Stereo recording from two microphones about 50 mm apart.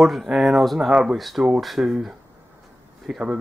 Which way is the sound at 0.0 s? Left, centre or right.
Centre.